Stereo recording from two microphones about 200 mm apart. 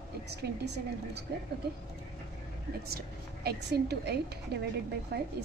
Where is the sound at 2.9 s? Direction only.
55° right (ahead or behind).